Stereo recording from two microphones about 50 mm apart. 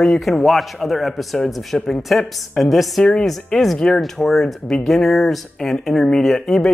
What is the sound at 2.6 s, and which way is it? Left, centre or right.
Speech, centre.